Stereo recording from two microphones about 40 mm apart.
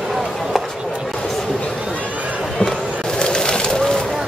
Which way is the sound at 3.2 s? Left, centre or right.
Left.